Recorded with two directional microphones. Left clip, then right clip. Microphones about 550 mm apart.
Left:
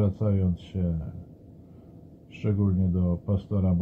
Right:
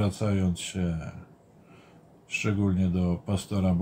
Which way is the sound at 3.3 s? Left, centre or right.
Centre.